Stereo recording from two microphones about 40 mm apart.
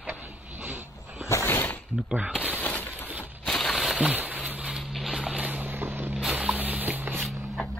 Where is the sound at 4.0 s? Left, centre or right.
Right.